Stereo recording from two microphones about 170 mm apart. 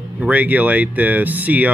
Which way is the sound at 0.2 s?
10° right (ahead or behind).